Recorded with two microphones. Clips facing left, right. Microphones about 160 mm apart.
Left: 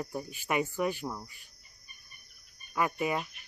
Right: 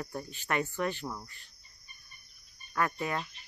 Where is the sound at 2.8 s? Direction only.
10° left (ahead or behind).